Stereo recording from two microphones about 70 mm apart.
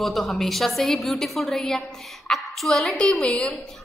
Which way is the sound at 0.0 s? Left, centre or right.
Centre.